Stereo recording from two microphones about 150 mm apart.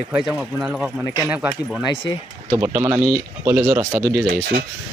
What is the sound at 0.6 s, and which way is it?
Speech, 5° right (ahead or behind).